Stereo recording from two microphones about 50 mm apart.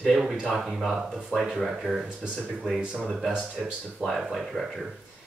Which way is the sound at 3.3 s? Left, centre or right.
Centre.